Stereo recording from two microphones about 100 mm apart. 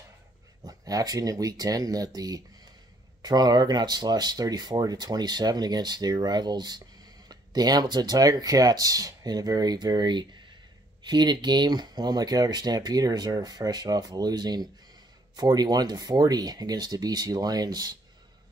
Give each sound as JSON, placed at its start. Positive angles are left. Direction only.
{"t": 0.7, "sound": "speech", "side_deg": -40}